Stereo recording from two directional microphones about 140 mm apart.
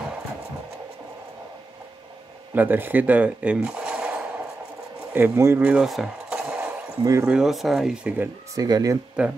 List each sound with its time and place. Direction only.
2.5 s speech: 15° right (ahead or behind)
7.0 s speech: 25° right (ahead or behind)
7.2 s speech: 5° right (ahead or behind)
8.5 s speech: 25° right (ahead or behind)
9.2 s speech: 10° right (ahead or behind)